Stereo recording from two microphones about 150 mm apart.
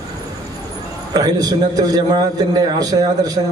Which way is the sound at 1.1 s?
25° right (ahead or behind).